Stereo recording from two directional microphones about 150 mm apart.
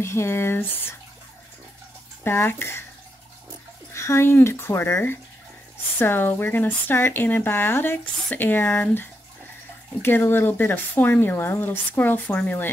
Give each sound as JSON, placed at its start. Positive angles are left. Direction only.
{"t": 0.0, "sound": "speech", "side_deg": 15}
{"t": 2.2, "sound": "speech", "side_deg": 15}
{"t": 3.9, "sound": "speech", "side_deg": 20}